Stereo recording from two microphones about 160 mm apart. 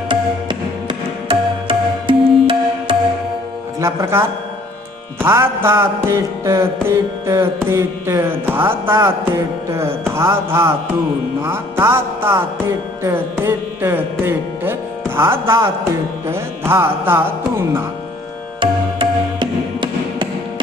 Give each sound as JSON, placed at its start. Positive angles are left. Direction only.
{"t": 0.1, "sound": "music", "side_deg": -30}
{"t": 3.8, "sound": "music", "side_deg": -15}
{"t": 18.6, "sound": "music", "side_deg": -30}